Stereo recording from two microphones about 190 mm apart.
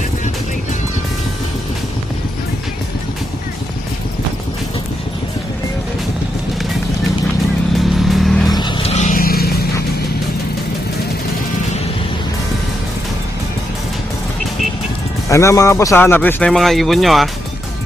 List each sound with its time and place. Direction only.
7.7 s vehicle: centre (ahead or behind)
8.5 s vehicle: 25° left (ahead or behind); by 9.5 s 50° left (ahead or behind)
15.2 s speech: 15° left (ahead or behind); by 17.3 s centre (ahead or behind)